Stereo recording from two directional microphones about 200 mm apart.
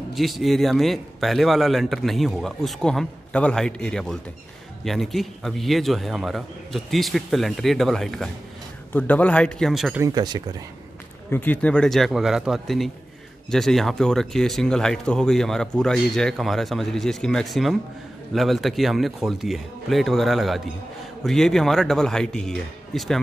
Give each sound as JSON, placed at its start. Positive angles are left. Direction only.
{"t": 0.1, "sound": "speech", "side_deg": 0}
{"t": 10.0, "sound": "speech", "side_deg": -20}
{"t": 11.2, "sound": "speech", "side_deg": 10}